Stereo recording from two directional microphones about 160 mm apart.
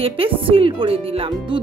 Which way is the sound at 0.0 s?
35° right (ahead or behind).